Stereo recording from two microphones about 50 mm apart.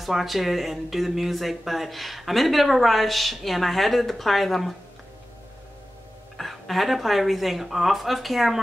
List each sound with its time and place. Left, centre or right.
0.0 s speech: centre
6.3 s speech: centre